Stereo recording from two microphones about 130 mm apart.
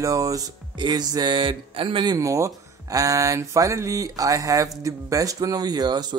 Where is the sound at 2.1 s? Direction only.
25° right (ahead or behind).